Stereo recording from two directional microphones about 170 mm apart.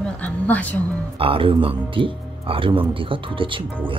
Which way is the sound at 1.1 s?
30° right (ahead or behind).